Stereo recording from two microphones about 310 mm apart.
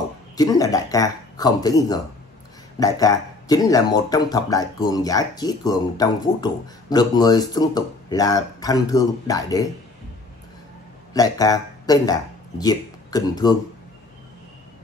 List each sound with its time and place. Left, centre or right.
0.4 s speech: centre
11.1 s speech: centre